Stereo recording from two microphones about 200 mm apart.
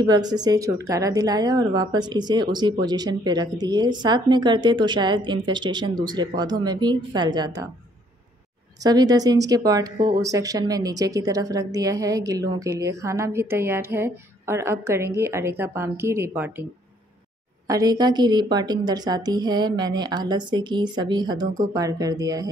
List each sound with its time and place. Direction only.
0.0 s speech: 20° right (ahead or behind)
8.8 s speech: 20° right (ahead or behind)
17.6 s speech: 20° right (ahead or behind)